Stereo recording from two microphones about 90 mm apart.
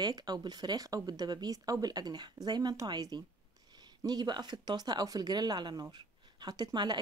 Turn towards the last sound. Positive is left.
turn(degrees=-50)  # may be behind; listen again after turning